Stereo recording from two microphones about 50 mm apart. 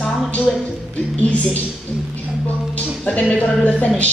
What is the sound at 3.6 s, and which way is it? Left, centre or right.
Speech, left.